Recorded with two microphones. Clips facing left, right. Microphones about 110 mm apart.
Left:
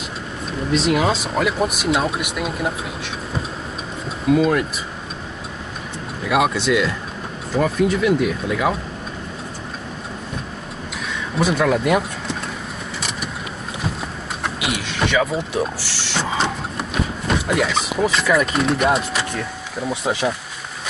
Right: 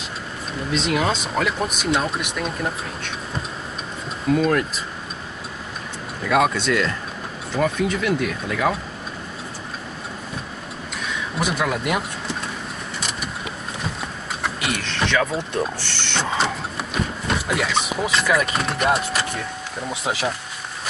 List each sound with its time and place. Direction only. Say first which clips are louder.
0.7 s speech: left 4 dB; centre (ahead or behind)
4.4 s speech: left 1 dB; 5° left (ahead or behind)
6.2 s speech: left 1 dB; 5° left (ahead or behind)
11.3 s speech: left 6 dB; 5° right (ahead or behind)
14.4 s speech: left 1 dB; 5° left (ahead or behind)